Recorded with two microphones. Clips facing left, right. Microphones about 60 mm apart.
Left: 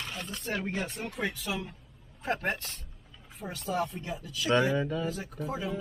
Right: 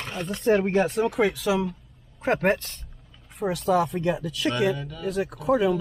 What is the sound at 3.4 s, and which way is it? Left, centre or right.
Speech, right.